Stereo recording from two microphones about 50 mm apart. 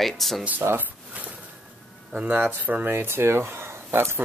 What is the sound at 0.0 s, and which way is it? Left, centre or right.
Speech, centre.